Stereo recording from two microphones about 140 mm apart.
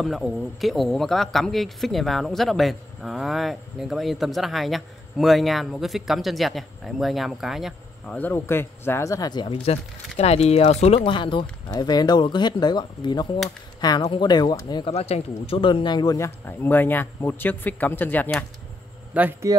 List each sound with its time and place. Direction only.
0.0 s speech: centre (ahead or behind)
8.2 s speech: 15° left (ahead or behind); by 9.6 s 30° left (ahead or behind)
9.7 s speech: 50° left (ahead or behind); by 14.9 s 30° left (ahead or behind)
14.9 s speech: 50° left (ahead or behind); by 16.3 s 30° left (ahead or behind)
16.4 s speech: 15° left (ahead or behind)
19.1 s speech: 10° right (ahead or behind)